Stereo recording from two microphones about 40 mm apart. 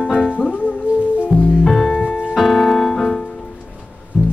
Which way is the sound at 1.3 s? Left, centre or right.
Centre.